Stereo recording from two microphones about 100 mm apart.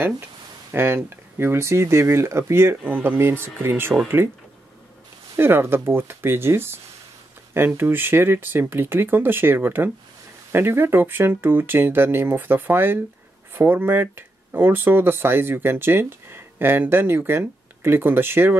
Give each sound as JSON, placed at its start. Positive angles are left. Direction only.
{"t": 0.7, "sound": "speech", "side_deg": -25}
{"t": 5.4, "sound": "speech", "side_deg": -20}